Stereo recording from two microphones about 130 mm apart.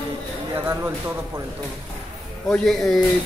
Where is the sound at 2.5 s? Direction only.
5° left (ahead or behind).